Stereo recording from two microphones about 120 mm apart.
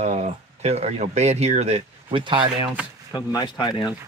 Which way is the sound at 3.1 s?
35° left (ahead or behind).